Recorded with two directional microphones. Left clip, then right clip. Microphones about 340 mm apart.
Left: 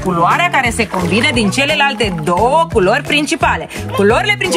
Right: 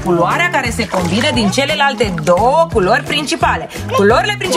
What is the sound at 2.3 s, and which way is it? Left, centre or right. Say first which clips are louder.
Speech: right 1 dB; centre.